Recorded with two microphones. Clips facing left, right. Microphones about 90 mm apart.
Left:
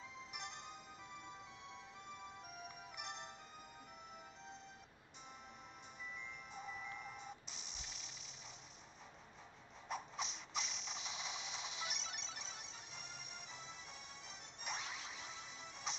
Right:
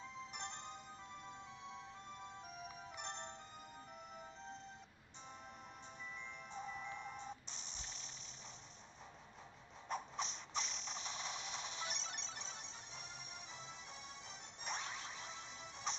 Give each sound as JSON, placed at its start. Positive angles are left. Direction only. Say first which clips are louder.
{"t": 0.5, "sound": "music", "louder": "right 2 dB", "side_deg": 5}
{"t": 3.1, "sound": "music", "louder": "right 2 dB", "side_deg": 5}
{"t": 6.6, "sound": "music", "louder": "right 2 dB", "side_deg": 5}
{"t": 7.7, "sound": "music", "louder": "right 1 dB", "side_deg": -35}
{"t": 9.8, "sound": "mechanisms", "louder": "right 2 dB", "side_deg": 5}
{"t": 14.6, "sound": "music", "louder": "right 1 dB", "side_deg": 5}